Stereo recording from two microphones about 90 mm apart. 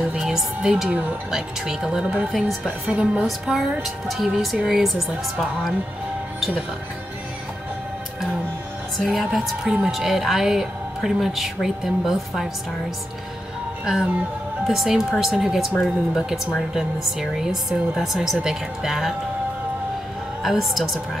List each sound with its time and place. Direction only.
0.1 s a woman's voice: 5° right (ahead or behind)
2.9 s a woman's voice: 15° right (ahead or behind)
3.3 s speech: 5° right (ahead or behind)
9.0 s speech: centre (ahead or behind)
13.8 s a woman's voice: 10° right (ahead or behind)
16.7 s speech: 5° right (ahead or behind)
20.4 s speech: centre (ahead or behind)